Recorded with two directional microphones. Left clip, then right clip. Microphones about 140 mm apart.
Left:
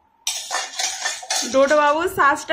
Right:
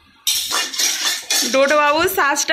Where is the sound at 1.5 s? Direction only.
15° right (ahead or behind).